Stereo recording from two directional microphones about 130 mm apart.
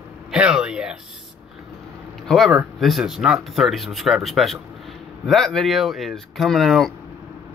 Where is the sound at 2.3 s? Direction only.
Centre (ahead or behind).